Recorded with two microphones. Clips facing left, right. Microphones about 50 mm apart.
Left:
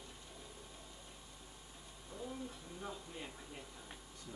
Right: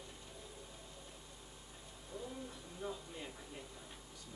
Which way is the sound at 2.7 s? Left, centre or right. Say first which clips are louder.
Right 3 dB; centre.